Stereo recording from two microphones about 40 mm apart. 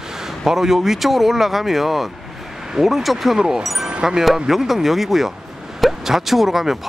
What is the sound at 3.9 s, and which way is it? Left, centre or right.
Music, right.